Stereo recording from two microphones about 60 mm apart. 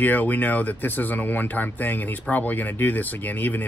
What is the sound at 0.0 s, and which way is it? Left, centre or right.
Speech, left.